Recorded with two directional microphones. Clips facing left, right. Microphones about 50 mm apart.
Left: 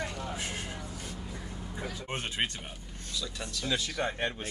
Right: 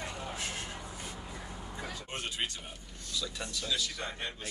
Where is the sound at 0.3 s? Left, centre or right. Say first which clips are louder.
Left 2 dB; left.